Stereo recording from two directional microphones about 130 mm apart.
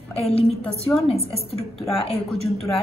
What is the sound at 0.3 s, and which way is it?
Speech, 50° left (ahead or behind).